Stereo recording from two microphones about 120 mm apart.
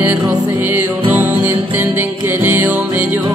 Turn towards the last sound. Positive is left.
turn(degrees=-15)  # may be behind; listen again after turning